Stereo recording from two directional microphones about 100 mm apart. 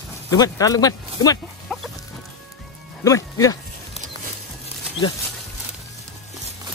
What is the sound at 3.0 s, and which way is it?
Speech, 35° left (ahead or behind).